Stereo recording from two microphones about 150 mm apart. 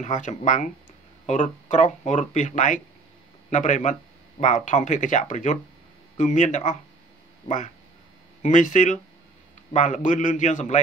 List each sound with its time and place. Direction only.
0.0 s speech: 50° left (ahead or behind)